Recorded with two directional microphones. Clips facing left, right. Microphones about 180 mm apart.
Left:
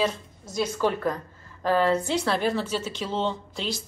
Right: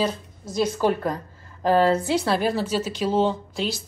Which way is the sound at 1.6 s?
30° right (ahead or behind).